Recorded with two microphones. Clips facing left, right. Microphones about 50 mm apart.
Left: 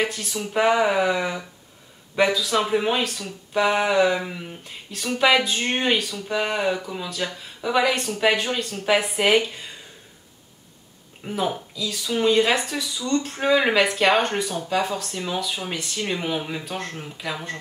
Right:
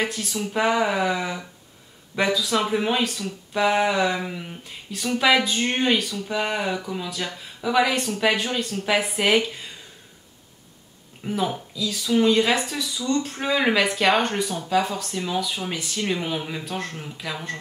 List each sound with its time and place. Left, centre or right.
0.0 s speech: centre
11.2 s speech: centre